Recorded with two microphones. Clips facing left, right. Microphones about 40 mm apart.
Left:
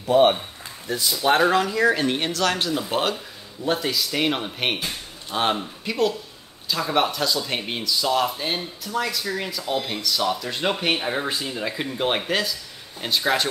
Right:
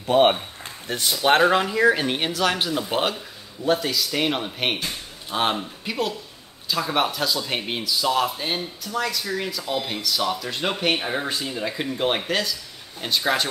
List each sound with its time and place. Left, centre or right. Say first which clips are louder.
0.0 s speech: left 1 dB; right
1.5 s speech: even; right
1.8 s speech: right 1 dB; centre
3.6 s speech: right 1 dB; centre